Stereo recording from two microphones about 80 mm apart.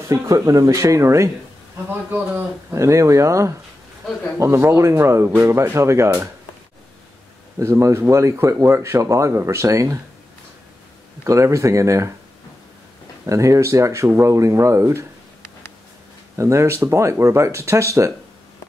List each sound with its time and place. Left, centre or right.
0.0 s speech: right
2.0 s a man's voice: right
2.7 s speech: right
7.5 s speech: right
11.2 s speech: right
13.2 s speech: right
16.3 s speech: right